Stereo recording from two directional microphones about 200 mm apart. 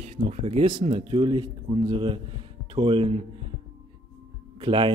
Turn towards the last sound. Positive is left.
turn(degrees=-25)  # may be behind; listen again after turning